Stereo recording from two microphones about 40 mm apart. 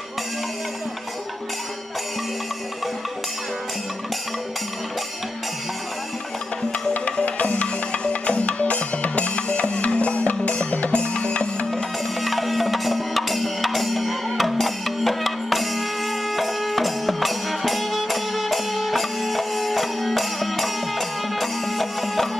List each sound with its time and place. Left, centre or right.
6.9 s music: left
7.6 s music: left
11.7 s music: centre